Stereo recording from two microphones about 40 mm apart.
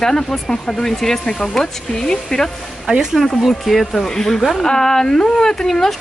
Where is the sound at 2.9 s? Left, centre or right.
Right.